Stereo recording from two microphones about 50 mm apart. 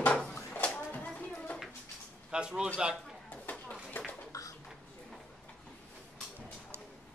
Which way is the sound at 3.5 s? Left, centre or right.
Left.